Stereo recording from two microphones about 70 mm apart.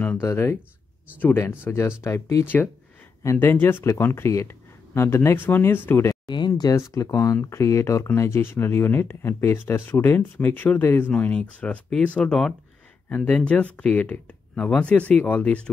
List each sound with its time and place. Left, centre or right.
0.2 s speech: left
1.1 s speech: left
1.8 s speech: left
2.4 s speech: left
6.2 s speech: left
6.7 s speech: left
7.4 s speech: left; by 15.7 s centre